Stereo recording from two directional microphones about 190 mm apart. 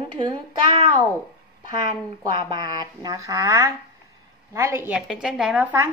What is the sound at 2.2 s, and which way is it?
A woman's voice, 25° right (ahead or behind).